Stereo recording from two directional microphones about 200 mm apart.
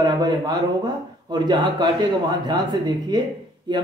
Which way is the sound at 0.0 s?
20° right (ahead or behind).